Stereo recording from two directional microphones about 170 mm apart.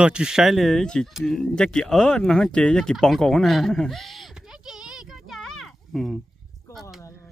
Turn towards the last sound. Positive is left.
turn(degrees=0)  # may be behind; listen again after turning